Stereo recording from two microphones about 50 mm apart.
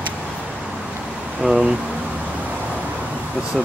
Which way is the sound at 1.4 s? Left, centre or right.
Centre.